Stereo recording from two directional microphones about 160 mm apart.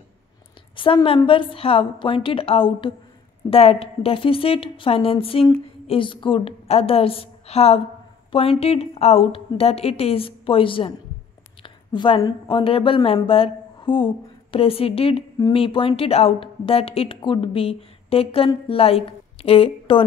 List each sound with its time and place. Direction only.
0.7 s a woman's voice: 30° left (ahead or behind)